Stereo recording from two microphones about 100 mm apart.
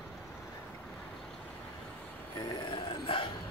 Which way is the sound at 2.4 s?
50° left (ahead or behind).